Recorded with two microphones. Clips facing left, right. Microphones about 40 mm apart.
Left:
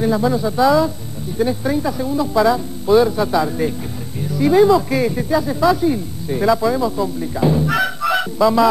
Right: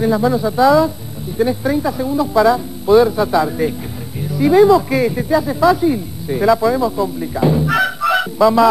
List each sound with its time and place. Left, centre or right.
0.0 s speech: centre